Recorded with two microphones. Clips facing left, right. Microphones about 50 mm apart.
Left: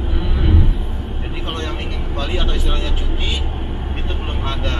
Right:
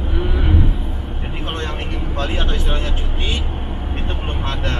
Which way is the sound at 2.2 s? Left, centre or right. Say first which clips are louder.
Even; right.